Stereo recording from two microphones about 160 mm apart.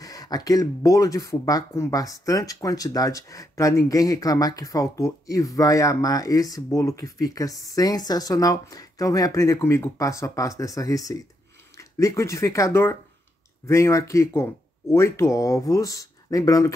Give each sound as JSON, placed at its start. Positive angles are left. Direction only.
{"t": 0.0, "sound": "speech", "side_deg": 20}